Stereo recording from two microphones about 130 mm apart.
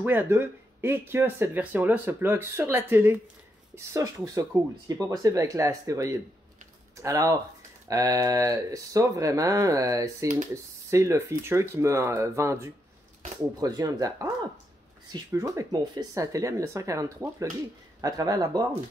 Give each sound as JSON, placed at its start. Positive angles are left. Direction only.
{"t": 0.0, "sound": "speech", "side_deg": -15}